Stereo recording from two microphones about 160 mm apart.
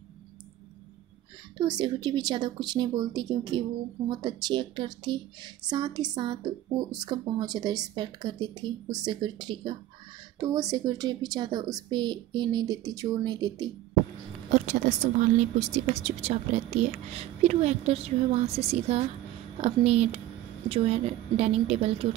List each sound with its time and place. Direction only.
1.6 s speech: 25° right (ahead or behind)
14.5 s a woman's voice: 45° right (ahead or behind)